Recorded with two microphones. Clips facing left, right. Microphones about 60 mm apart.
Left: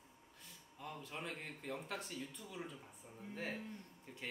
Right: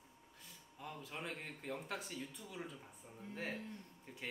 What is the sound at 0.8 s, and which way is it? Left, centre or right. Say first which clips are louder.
Speech: even; centre.